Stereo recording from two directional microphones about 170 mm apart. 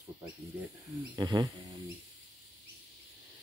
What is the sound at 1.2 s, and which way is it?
Speech, 20° right (ahead or behind).